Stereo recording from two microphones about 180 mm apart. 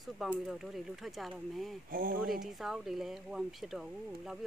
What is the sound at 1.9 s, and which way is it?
Speech, 50° right (ahead or behind).